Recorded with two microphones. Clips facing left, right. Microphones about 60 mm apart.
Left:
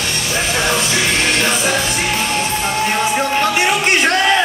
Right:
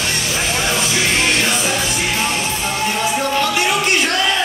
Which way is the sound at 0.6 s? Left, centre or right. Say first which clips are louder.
Left 2 dB; left.